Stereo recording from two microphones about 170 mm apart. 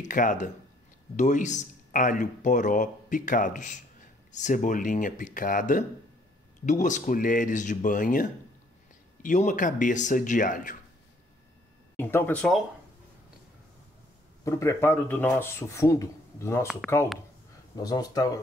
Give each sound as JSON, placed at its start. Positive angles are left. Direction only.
{"t": 0.0, "sound": "speech", "side_deg": 50}
{"t": 12.0, "sound": "a man's voice", "side_deg": 10}
{"t": 14.4, "sound": "a man's voice", "side_deg": 15}
{"t": 16.8, "sound": "speech", "side_deg": 0}
{"t": 17.7, "sound": "speech", "side_deg": 20}